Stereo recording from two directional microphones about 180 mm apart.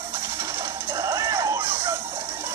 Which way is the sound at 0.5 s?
15° right (ahead or behind).